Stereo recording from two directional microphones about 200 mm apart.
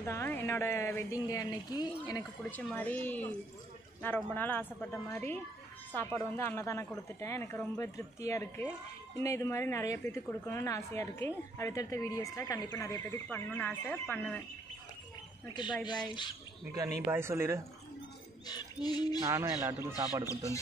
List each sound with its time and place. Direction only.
0.0 s speech: 10° left (ahead or behind)
15.4 s a sound: 20° left (ahead or behind)
16.7 s speech: 15° right (ahead or behind)
18.5 s a sound: 20° left (ahead or behind)
19.2 s speech: 15° right (ahead or behind)
20.2 s speech: 15° left (ahead or behind)